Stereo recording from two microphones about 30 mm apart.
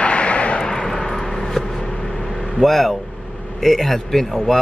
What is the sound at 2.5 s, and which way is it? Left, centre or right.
Speech, centre.